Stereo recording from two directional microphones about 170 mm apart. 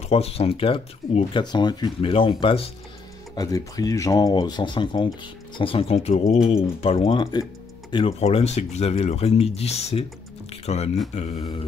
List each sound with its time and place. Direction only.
0.1 s speech: 35° left (ahead or behind)
3.3 s speech: 20° left (ahead or behind); by 11.4 s 35° left (ahead or behind)